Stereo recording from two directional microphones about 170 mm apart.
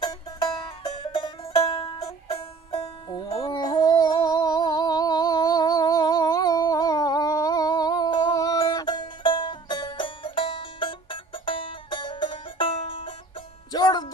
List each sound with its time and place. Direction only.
1.1 s music: 30° left (ahead or behind)
3.4 s a sound: 25° left (ahead or behind)
13.7 s music: 25° left (ahead or behind)